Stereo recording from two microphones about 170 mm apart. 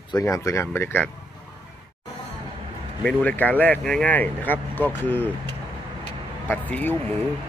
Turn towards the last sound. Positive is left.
turn(degrees=10)  # may be behind; listen again after turning